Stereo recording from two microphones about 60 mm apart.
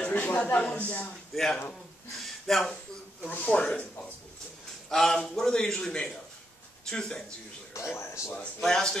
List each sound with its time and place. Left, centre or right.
0.0 s speech: left
1.3 s a man's voice: centre
2.2 s gasp: centre
3.3 s speech: left
4.8 s a man's voice: centre
7.9 s speech: left
8.5 s a man's voice: centre